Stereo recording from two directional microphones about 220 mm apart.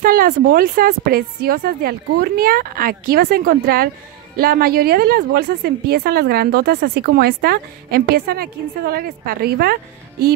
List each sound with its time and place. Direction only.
0.0 s speech: 40° right (ahead or behind)